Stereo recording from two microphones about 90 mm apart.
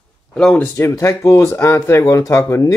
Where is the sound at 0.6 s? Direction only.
30° left (ahead or behind).